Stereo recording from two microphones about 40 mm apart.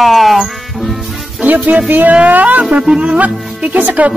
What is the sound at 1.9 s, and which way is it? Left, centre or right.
Speech, right.